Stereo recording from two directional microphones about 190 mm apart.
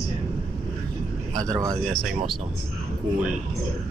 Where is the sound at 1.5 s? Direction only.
20° right (ahead or behind).